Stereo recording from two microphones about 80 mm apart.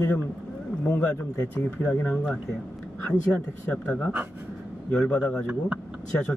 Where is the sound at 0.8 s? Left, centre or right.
Left.